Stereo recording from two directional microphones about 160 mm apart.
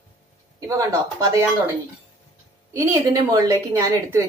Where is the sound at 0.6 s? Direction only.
20° right (ahead or behind).